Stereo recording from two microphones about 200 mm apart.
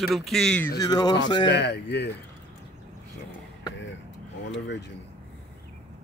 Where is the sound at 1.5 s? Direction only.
55° left (ahead or behind).